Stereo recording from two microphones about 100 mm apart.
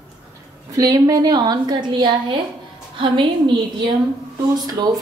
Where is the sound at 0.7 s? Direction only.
40° right (ahead or behind); by 3.8 s 55° right (ahead or behind).